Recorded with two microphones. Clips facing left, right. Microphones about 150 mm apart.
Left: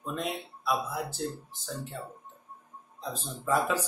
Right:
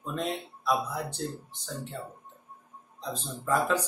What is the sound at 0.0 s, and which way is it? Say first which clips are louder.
Speech: right 1 dB; 5° left (ahead or behind).